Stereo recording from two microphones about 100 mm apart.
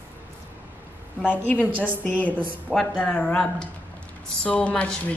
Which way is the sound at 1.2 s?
15° left (ahead or behind).